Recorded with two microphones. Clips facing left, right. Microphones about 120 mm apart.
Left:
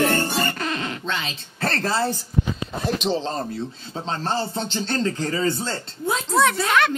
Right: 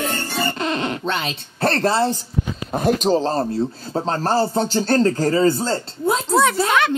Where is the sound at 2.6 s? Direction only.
50° right (ahead or behind); by 6.4 s 30° right (ahead or behind).